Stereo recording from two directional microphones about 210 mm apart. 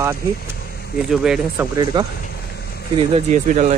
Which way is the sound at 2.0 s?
20° right (ahead or behind).